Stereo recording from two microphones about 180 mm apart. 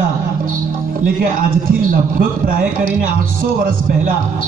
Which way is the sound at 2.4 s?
55° right (ahead or behind).